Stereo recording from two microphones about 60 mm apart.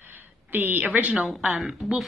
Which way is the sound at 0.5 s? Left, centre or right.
Right.